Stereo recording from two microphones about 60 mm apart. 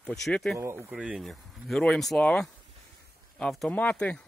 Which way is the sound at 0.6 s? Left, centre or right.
Right.